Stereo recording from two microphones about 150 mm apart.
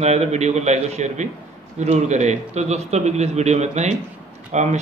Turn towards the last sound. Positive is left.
turn(degrees=-50)  # may be behind; listen again after turning